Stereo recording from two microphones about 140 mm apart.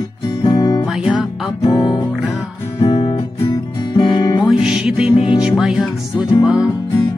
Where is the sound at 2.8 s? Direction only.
40° left (ahead or behind).